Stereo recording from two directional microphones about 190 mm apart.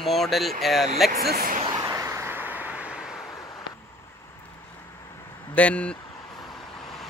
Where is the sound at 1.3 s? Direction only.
50° right (ahead or behind).